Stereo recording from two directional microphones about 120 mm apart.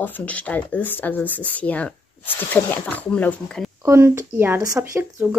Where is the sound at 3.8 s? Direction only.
20° right (ahead or behind).